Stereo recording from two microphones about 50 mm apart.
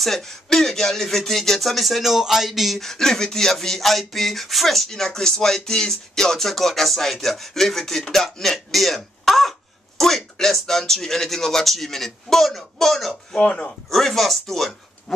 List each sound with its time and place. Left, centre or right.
0.0 s speech: centre
13.5 s speech: left
13.8 s speech: centre